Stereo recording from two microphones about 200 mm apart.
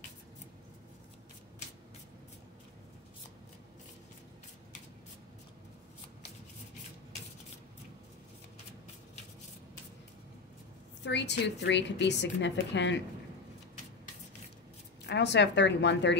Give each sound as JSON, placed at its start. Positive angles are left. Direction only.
{"t": 11.1, "sound": "a woman's voice", "side_deg": 60}
{"t": 15.0, "sound": "a woman's voice", "side_deg": 60}